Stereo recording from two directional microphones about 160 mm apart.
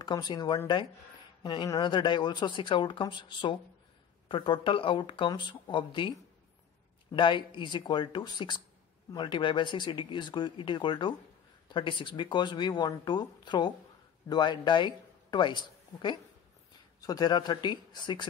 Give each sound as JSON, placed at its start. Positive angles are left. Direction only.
{"t": 0.0, "sound": "speech", "side_deg": 25}
{"t": 7.2, "sound": "speech", "side_deg": 30}